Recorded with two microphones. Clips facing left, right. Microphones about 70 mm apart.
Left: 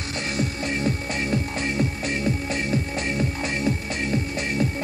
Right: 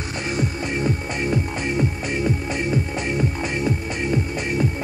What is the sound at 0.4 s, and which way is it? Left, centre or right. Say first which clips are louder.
Music: right 1 dB; centre.